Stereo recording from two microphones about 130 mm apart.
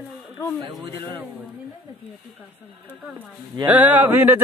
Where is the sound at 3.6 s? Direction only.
10° right (ahead or behind).